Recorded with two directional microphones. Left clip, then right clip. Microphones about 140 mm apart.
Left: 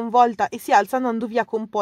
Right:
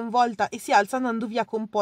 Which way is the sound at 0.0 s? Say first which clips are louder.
Left 5 dB; 30° left (ahead or behind).